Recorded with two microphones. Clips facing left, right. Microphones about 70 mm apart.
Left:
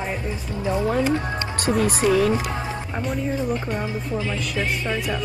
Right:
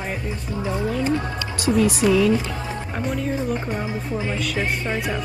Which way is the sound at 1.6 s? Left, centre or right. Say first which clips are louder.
Right 2 dB; left.